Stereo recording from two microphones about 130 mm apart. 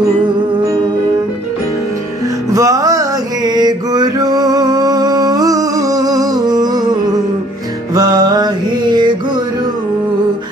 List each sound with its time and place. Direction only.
2.5 s music: 25° right (ahead or behind)